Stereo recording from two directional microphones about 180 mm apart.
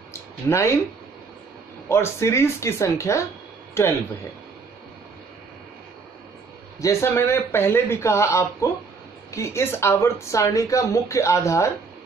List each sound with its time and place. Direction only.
0.5 s a woman's voice: 15° left (ahead or behind)
1.9 s a woman's voice: 15° left (ahead or behind)
6.8 s a woman's voice: 15° left (ahead or behind)